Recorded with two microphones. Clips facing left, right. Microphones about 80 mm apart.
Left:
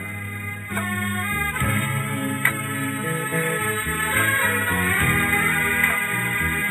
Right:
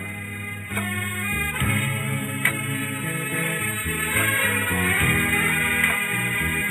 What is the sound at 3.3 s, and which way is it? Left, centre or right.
Music, left.